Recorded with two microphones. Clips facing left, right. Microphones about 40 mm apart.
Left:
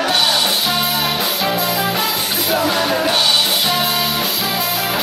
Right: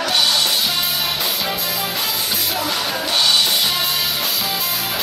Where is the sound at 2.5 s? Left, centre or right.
Centre.